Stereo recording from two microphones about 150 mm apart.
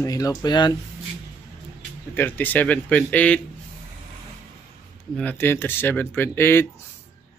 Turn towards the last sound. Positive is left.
turn(degrees=15)  # may be behind; listen again after turning